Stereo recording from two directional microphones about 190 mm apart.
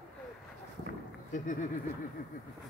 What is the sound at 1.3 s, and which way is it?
Speech, 40° left (ahead or behind).